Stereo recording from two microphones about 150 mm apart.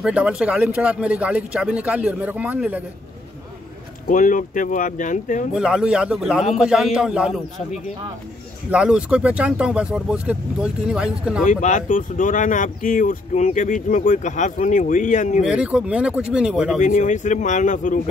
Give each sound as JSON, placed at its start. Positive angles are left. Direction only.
{"t": 0.0, "sound": "a man's voice", "side_deg": -5}
{"t": 4.1, "sound": "speech", "side_deg": 60}
{"t": 5.5, "sound": "a man's voice", "side_deg": -5}
{"t": 11.4, "sound": "speech", "side_deg": 60}
{"t": 15.4, "sound": "a man's voice", "side_deg": -5}
{"t": 16.8, "sound": "speech", "side_deg": 55}